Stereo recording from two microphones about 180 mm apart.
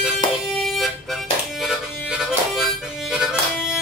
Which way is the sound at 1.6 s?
5° right (ahead or behind).